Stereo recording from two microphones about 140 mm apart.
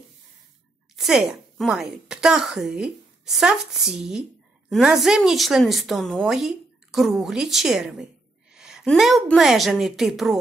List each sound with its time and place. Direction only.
0.9 s a woman's voice: centre (ahead or behind)